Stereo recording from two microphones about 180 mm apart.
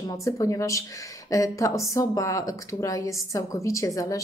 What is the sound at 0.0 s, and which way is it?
A woman's voice, 20° left (ahead or behind).